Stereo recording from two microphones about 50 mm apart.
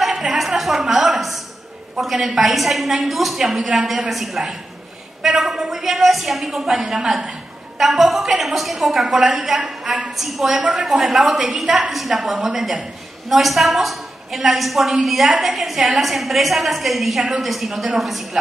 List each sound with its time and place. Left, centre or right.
0.0 s a woman's voice: centre
7.8 s a woman's voice: centre
10.5 s a woman's voice: centre